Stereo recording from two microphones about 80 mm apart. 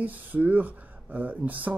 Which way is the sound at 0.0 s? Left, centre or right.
Right.